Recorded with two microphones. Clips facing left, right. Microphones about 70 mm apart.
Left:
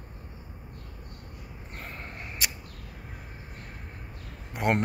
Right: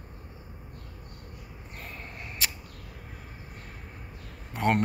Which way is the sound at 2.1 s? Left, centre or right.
Centre.